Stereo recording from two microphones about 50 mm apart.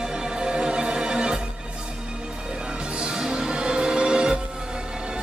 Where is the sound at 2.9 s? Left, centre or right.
Centre.